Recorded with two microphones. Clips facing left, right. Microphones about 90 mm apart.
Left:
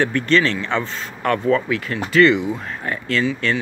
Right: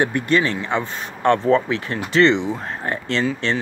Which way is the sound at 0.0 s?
15° right (ahead or behind).